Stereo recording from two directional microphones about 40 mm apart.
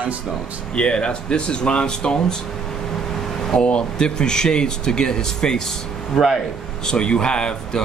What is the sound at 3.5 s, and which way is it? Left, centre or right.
Speech, left.